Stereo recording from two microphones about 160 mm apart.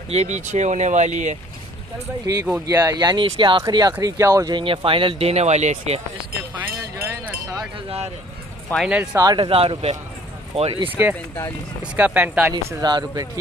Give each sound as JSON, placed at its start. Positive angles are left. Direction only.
{"t": 0.1, "sound": "speech", "side_deg": -45}
{"t": 2.3, "sound": "speech", "side_deg": -20}
{"t": 7.0, "sound": "chink", "side_deg": -20}
{"t": 8.7, "sound": "speech", "side_deg": -5}
{"t": 9.2, "sound": "speech", "side_deg": -30}
{"t": 11.8, "sound": "speech", "side_deg": -10}
{"t": 12.8, "sound": "speech", "side_deg": -25}